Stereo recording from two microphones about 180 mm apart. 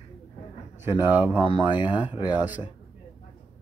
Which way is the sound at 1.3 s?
30° left (ahead or behind).